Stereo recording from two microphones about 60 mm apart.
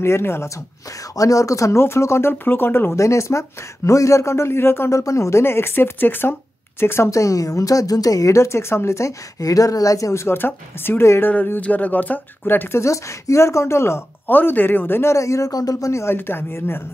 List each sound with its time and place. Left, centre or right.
0.0 s speech: left
1.1 s a woman's voice: left
1.8 s speech: left
2.3 s speech: left
3.0 s a woman's voice: left
4.9 s a woman's voice: left
5.4 s speech: left
7.1 s a woman's voice: left
11.6 s speech: left
12.7 s speech: left
14.3 s speech: left
15.1 s a woman's voice: left
16.2 s speech: left